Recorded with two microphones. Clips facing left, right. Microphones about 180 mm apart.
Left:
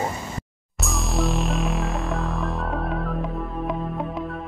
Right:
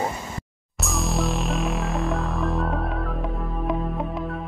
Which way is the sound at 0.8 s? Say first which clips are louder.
Even; centre (ahead or behind).